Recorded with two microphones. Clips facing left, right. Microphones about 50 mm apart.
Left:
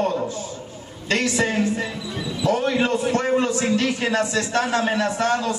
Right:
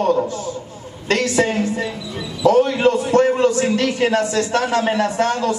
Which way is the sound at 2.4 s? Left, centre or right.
Right.